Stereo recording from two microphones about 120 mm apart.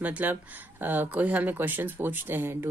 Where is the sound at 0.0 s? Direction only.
15° right (ahead or behind).